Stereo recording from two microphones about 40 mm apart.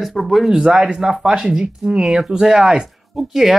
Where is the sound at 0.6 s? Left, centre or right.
Centre.